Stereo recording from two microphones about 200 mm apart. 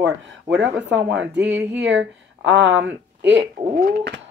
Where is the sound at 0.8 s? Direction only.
65° right (ahead or behind).